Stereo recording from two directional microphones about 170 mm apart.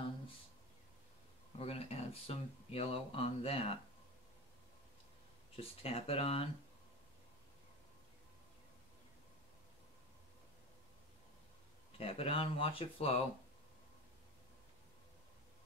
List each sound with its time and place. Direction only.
1.6 s speech: 35° left (ahead or behind)
5.6 s speech: 35° left (ahead or behind)
12.0 s speech: 35° left (ahead or behind)